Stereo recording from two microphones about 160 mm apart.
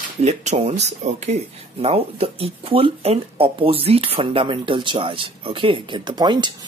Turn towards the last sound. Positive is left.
turn(degrees=-25)  # may be behind; listen again after turning